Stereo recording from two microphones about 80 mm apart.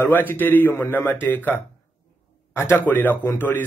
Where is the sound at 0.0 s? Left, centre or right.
Left.